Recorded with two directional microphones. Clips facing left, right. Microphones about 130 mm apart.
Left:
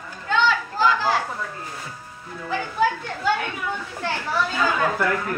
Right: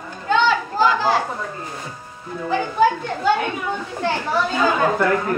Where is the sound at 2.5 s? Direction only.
25° right (ahead or behind).